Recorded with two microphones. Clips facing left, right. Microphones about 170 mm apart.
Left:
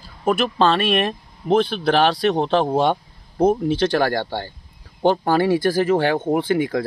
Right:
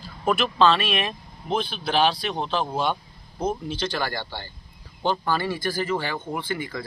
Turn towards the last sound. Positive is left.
turn(degrees=70)  # may be behind; listen again after turning